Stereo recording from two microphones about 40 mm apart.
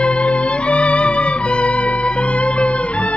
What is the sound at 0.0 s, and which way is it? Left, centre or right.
Music, left.